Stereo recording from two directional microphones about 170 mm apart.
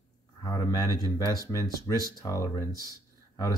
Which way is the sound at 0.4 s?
20° left (ahead or behind).